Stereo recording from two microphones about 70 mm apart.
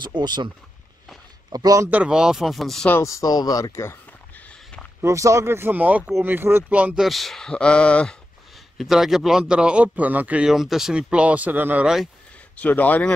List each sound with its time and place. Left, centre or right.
0.0 s speech: right
1.5 s speech: right
2.0 s speech: centre
3.0 s speech: left
3.3 s speech: left
3.7 s speech: left
5.0 s speech: right
6.7 s speech: centre
7.0 s speech: centre
8.7 s a man's voice: centre; by 10.4 s right
10.4 s a man's voice: centre; by 11.8 s right
11.8 s speech: centre
12.5 s speech: left